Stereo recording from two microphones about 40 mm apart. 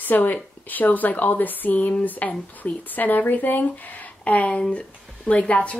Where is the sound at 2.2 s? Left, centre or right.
Left.